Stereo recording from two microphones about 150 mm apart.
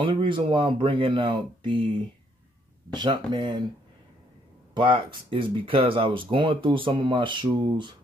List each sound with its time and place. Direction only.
0.0 s speech: 35° right (ahead or behind)
3.0 s speech: 30° right (ahead or behind)
4.7 s speech: 35° right (ahead or behind)